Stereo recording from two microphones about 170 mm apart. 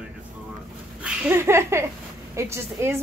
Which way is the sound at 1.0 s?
15° right (ahead or behind).